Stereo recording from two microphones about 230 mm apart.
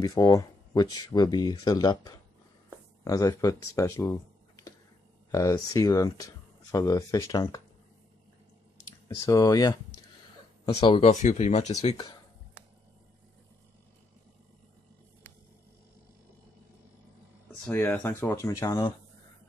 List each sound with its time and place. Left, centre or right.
0.0 s speech: centre
3.7 s a sound: centre
5.3 s speech: centre
9.0 s speech: centre
17.6 s speech: centre